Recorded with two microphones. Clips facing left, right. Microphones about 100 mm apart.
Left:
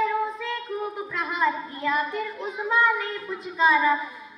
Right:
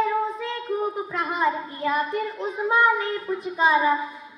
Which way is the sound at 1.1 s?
35° right (ahead or behind).